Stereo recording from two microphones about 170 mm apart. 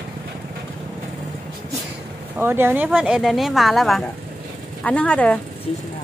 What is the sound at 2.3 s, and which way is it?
A woman's voice, 15° right (ahead or behind).